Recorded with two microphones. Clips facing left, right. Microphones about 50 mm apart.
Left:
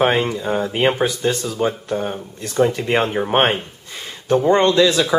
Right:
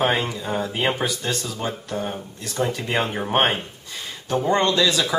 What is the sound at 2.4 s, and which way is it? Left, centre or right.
Speech, left.